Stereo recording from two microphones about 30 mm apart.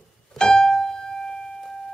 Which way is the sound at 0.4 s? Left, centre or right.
Left.